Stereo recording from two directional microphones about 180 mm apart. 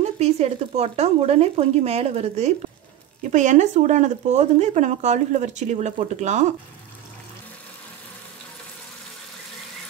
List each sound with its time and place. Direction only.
0.0 s speech: 35° right (ahead or behind)